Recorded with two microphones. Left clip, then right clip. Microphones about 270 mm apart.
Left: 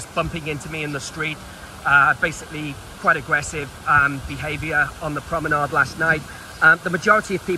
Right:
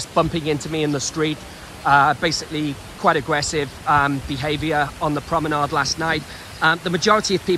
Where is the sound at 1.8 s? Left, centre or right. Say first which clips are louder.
Even; right.